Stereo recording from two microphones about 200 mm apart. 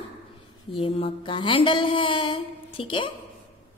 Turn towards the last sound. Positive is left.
turn(degrees=25)  # may be behind; listen again after turning